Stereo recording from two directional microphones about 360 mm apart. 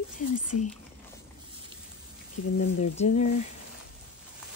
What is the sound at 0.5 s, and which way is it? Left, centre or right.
Speech, left.